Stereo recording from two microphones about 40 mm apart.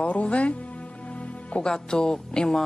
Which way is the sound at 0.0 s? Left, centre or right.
Left.